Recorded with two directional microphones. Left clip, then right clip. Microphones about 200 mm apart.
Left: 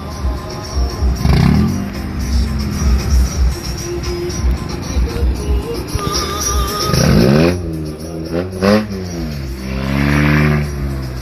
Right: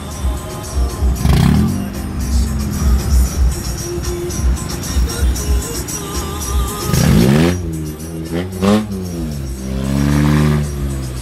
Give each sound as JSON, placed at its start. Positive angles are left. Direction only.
{"t": 1.2, "sound": "music", "side_deg": 0}
{"t": 6.9, "sound": "vehicle", "side_deg": -45}
{"t": 8.4, "sound": "music", "side_deg": -50}
{"t": 9.8, "sound": "vehicle", "side_deg": -30}